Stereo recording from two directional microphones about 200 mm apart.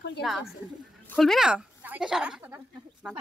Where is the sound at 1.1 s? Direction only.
Centre (ahead or behind).